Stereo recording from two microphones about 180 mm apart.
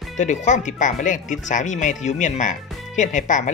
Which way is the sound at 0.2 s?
40° left (ahead or behind).